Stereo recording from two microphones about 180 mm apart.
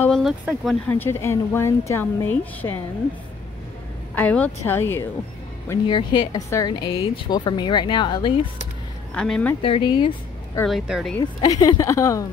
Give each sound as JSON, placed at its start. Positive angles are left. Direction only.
{"t": 0.0, "sound": "speech", "side_deg": 0}
{"t": 0.8, "sound": "a woman's voice", "side_deg": 10}
{"t": 4.1, "sound": "a woman's voice", "side_deg": 10}
{"t": 5.9, "sound": "a woman's voice", "side_deg": 25}
{"t": 9.1, "sound": "speech", "side_deg": 5}
{"t": 9.6, "sound": "speech", "side_deg": 30}
{"t": 10.6, "sound": "speech", "side_deg": 0}
{"t": 11.1, "sound": "a woman's voice", "side_deg": 20}